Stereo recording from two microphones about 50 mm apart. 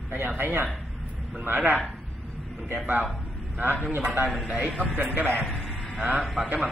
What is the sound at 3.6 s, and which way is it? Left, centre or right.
Speech, right.